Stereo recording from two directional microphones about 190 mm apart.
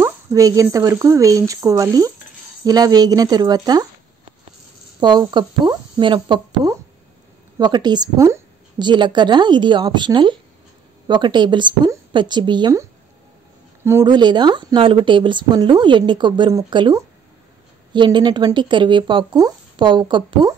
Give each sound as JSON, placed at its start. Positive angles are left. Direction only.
{"t": 0.0, "sound": "a woman's voice", "side_deg": -15}
{"t": 5.0, "sound": "a woman's voice", "side_deg": -25}
{"t": 13.8, "sound": "a woman's voice", "side_deg": -15}